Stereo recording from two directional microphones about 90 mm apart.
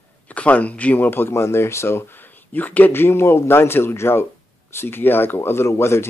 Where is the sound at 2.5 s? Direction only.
20° left (ahead or behind).